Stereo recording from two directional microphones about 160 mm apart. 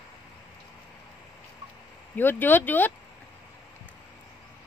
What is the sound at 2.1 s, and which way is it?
Speech, 10° left (ahead or behind).